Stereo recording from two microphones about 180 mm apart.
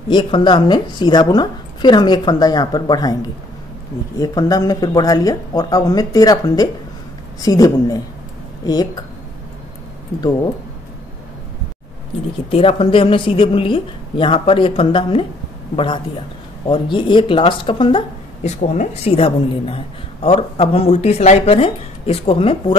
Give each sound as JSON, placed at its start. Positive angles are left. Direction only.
{"t": 0.1, "sound": "a woman's voice", "side_deg": 25}
{"t": 4.2, "sound": "a woman's voice", "side_deg": 20}
{"t": 12.4, "sound": "a woman's voice", "side_deg": 30}
{"t": 18.6, "sound": "speech", "side_deg": 40}